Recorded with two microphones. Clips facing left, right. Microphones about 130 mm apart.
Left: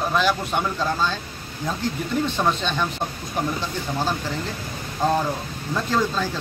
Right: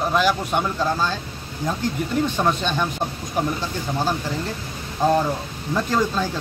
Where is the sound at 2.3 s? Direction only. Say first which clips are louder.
Right 1 dB; 10° right (ahead or behind).